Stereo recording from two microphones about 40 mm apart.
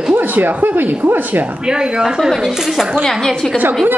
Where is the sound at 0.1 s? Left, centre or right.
Right.